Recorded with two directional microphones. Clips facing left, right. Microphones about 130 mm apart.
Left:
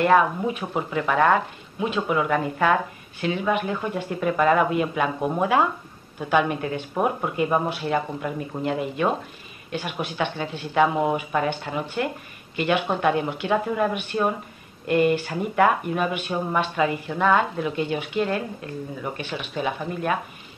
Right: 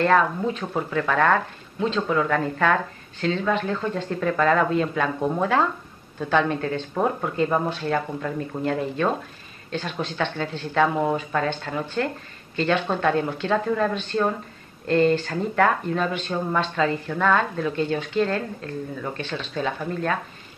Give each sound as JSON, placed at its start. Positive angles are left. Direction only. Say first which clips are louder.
{"t": 0.0, "sound": "speech", "louder": "left 1 dB", "side_deg": 15}